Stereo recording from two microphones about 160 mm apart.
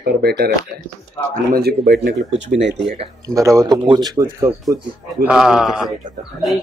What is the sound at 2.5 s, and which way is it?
Speech, 90° right.